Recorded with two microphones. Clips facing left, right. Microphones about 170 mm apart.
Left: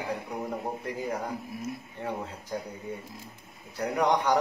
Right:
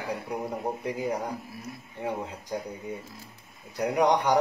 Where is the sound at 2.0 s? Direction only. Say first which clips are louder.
Right 3 dB; 15° right (ahead or behind).